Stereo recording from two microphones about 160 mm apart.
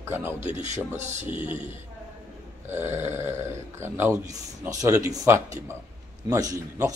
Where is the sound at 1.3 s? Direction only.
35° left (ahead or behind).